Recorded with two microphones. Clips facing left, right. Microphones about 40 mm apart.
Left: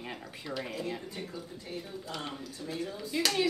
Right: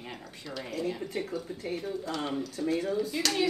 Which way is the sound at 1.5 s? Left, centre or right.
Right.